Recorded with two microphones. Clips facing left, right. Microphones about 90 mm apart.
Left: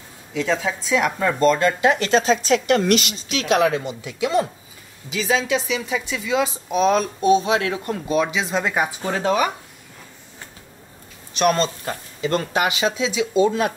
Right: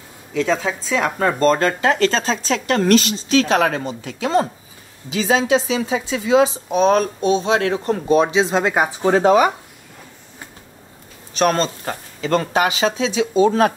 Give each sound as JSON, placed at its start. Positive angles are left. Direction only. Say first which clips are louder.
{"t": 0.5, "sound": "speech", "louder": "left 1 dB", "side_deg": -35}
{"t": 11.3, "sound": "speech", "louder": "right 1 dB", "side_deg": -35}